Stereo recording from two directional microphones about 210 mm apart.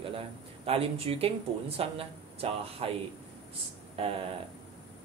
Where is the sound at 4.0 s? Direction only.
25° right (ahead or behind).